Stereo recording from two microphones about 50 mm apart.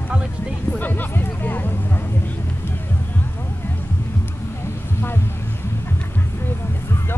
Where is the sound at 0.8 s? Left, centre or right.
Left.